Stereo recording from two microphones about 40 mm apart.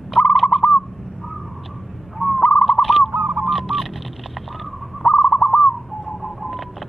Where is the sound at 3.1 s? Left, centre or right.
Right.